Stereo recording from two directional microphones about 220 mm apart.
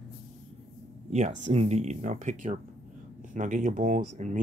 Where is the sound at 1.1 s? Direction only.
30° right (ahead or behind).